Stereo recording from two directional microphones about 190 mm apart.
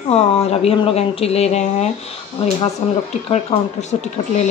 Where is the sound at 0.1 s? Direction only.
35° left (ahead or behind).